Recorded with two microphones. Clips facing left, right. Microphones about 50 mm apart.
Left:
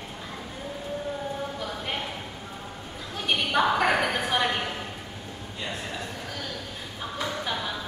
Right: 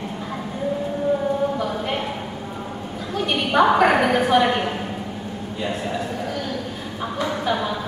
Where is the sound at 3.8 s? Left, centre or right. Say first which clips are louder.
Right 7 dB; centre.